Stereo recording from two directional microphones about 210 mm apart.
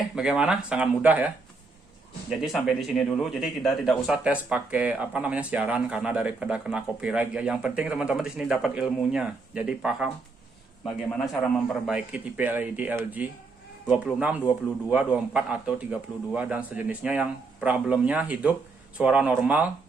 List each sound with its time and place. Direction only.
0.1 s a man's voice: centre (ahead or behind)